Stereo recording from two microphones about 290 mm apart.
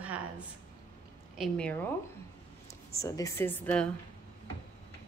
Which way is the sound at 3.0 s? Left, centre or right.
Centre.